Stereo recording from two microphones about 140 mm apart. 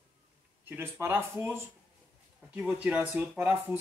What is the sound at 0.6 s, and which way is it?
Speech, 15° right (ahead or behind).